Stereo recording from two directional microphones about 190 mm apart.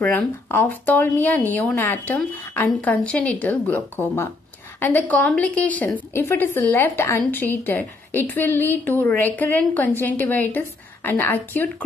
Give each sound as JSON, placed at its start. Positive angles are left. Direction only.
{"t": 0.0, "sound": "a woman's voice", "side_deg": 5}